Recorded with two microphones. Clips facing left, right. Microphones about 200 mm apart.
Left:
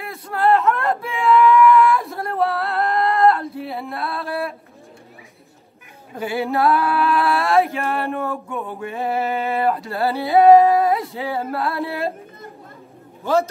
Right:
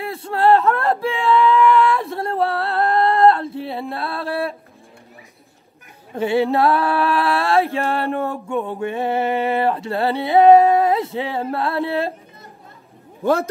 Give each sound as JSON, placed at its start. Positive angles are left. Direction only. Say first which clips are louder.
{"t": 0.0, "sound": "male singing", "louder": "right 2 dB", "side_deg": -30}
{"t": 6.1, "sound": "a sound", "louder": "right 4 dB", "side_deg": -25}
{"t": 11.1, "sound": "music", "louder": "right 1 dB", "side_deg": -25}
{"t": 13.2, "sound": "a man's voice", "louder": "right 1 dB", "side_deg": -55}